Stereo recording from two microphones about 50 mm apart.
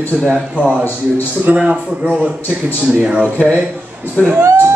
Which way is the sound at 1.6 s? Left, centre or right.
Right.